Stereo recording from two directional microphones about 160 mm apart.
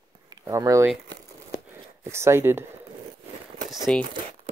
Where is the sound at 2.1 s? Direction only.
15° right (ahead or behind).